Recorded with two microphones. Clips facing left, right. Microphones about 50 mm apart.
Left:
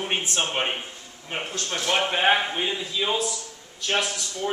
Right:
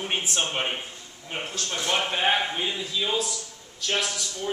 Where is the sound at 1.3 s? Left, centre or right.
Left.